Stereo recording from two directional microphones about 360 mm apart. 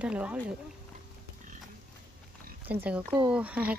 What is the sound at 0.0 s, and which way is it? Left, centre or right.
Speech, centre.